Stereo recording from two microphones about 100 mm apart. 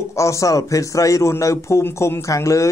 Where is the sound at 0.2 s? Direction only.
30° left (ahead or behind).